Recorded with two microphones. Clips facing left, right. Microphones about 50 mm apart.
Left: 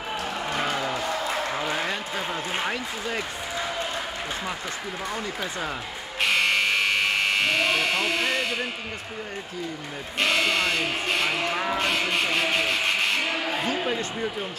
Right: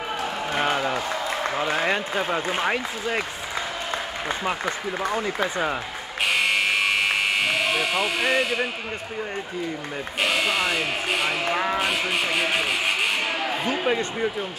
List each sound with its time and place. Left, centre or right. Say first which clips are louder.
0.7 s a sound: right 3 dB; right
1.7 s basketball bounce: right 4 dB; right
2.5 s speech: right 4 dB; right
4.5 s speech: right 5 dB; right
6.4 s electric shaver: right 1 dB; centre
10.2 s speech: even; centre
13.8 s speech: right 4 dB; right